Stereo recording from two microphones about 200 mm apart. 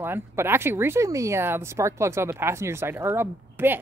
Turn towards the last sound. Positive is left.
turn(degrees=-10)  # may be behind; listen again after turning